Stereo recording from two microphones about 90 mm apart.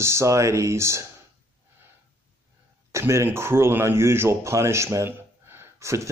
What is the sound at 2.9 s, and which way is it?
A man's voice, 35° right (ahead or behind).